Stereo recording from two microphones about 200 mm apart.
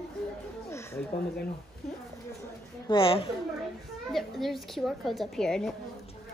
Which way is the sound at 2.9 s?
25° left (ahead or behind).